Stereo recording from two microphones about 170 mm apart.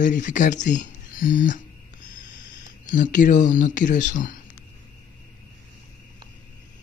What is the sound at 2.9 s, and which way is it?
Speech, 50° left (ahead or behind).